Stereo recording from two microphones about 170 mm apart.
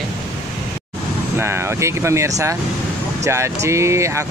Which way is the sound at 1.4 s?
15° right (ahead or behind).